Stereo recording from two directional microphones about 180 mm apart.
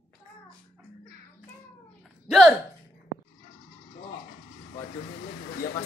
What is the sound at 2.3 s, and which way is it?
Gasp, centre (ahead or behind).